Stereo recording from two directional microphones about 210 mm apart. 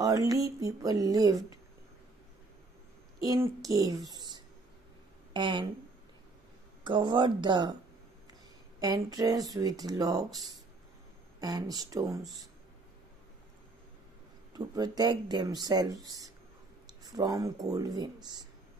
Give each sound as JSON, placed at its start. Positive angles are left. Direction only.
{"t": 0.0, "sound": "speech", "side_deg": -15}
{"t": 3.3, "sound": "speech", "side_deg": -15}
{"t": 6.8, "sound": "speech", "side_deg": -25}
{"t": 8.7, "sound": "speech", "side_deg": -20}
{"t": 14.5, "sound": "speech", "side_deg": -20}